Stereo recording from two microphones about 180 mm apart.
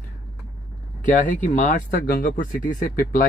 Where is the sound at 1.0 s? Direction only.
45° left (ahead or behind).